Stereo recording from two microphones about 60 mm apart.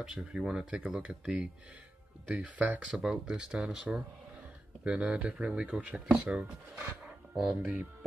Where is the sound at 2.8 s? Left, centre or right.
Centre.